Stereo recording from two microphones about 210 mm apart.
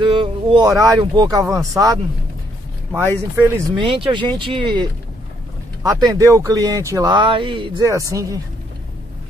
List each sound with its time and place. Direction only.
0.0 s speech: 25° right (ahead or behind)
3.3 s speech: 10° right (ahead or behind)
3.8 s speech: 25° right (ahead or behind)